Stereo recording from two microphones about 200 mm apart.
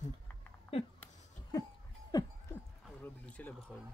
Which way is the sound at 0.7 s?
30° left (ahead or behind).